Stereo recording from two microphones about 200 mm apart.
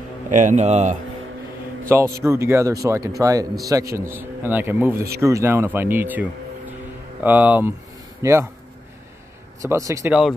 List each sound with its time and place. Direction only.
0.3 s speech: 40° right (ahead or behind)
1.9 s a man's voice: 15° right (ahead or behind)
7.2 s a man's voice: 10° right (ahead or behind)
9.6 s a man's voice: 15° right (ahead or behind)